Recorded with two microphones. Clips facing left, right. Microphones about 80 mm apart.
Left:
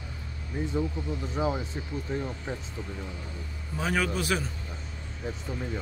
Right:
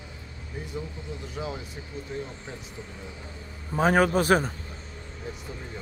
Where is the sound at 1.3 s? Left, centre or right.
Left.